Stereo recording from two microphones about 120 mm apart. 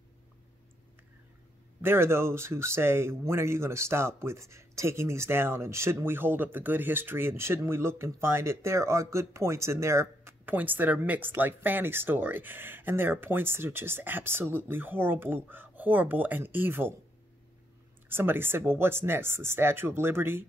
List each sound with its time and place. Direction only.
1.8 s speech: 20° right (ahead or behind)
18.0 s speech: 20° right (ahead or behind)